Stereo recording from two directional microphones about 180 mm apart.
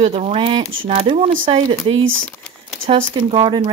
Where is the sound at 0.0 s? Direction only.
35° right (ahead or behind).